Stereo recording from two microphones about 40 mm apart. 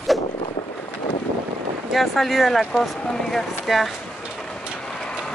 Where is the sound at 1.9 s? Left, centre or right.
Centre.